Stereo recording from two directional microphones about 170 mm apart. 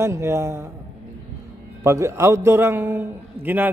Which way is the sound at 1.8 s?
15° right (ahead or behind).